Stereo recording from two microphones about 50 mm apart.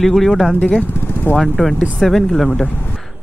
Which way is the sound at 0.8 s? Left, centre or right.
Left.